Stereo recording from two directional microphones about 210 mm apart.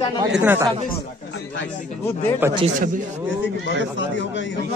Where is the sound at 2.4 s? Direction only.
10° right (ahead or behind).